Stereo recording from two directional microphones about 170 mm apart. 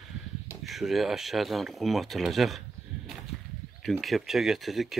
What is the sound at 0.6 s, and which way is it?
Speech, centre (ahead or behind).